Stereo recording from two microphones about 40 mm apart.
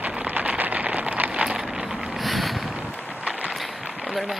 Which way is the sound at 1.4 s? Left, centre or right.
Centre.